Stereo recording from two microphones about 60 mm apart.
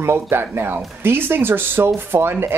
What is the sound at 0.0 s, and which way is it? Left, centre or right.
Speech, right.